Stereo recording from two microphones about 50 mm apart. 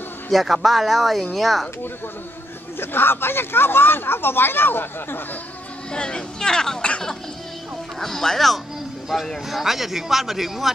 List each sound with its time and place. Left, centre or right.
0.3 s a man's voice: centre
2.8 s speech: left
5.9 s speech: centre
6.9 s a sound: centre
8.0 s a man's voice: centre